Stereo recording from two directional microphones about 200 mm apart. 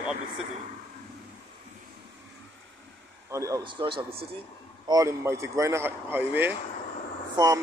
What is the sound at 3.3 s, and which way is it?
Speech, 15° right (ahead or behind).